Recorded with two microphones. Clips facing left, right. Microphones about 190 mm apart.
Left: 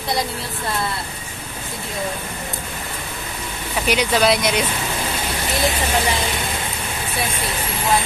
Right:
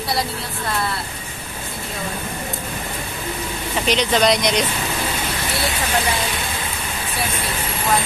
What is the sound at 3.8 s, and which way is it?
Speech, 10° left (ahead or behind).